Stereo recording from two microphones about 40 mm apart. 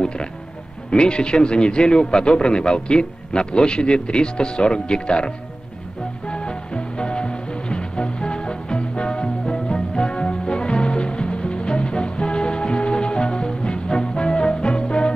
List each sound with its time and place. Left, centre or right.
0.0 s a man's voice: left
6.2 s music: left